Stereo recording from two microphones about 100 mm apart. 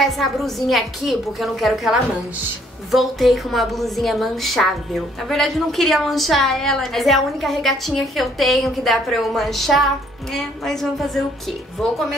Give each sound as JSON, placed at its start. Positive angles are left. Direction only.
{"t": 0.0, "sound": "a woman's voice", "side_deg": 0}